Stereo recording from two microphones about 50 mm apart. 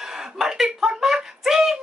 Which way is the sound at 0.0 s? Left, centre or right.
Centre.